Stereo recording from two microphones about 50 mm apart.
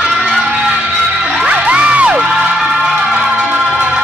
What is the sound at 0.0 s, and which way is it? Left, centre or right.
Music, centre.